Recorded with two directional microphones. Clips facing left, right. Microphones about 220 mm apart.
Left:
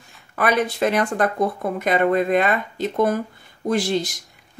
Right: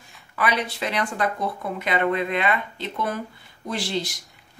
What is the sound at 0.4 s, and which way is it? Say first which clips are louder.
A woman's voice: left 6 dB; 50° left (ahead or behind).